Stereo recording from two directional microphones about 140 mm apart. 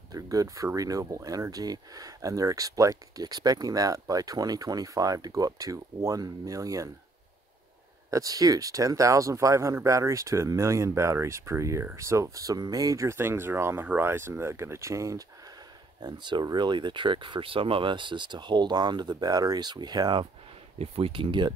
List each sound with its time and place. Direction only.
0.1 s speech: 25° right (ahead or behind)
8.1 s speech: 25° right (ahead or behind)
20.8 s speech: 45° right (ahead or behind)